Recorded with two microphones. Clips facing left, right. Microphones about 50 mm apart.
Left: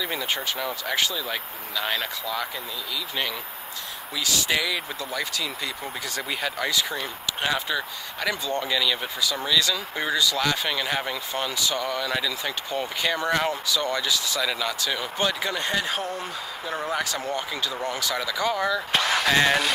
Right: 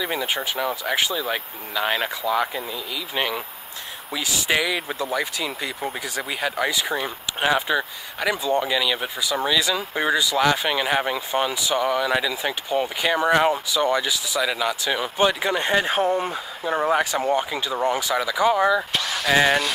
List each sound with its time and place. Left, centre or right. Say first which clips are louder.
0.0 s speech: right 3 dB; centre
4.1 s speech: right 2 dB; centre
19.2 s speech: right 5 dB; centre